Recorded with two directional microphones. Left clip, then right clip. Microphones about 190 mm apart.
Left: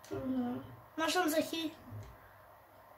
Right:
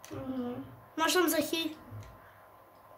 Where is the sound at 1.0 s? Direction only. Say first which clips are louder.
Right 4 dB; 25° right (ahead or behind).